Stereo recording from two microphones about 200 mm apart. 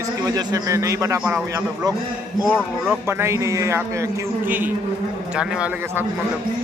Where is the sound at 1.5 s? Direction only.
15° right (ahead or behind).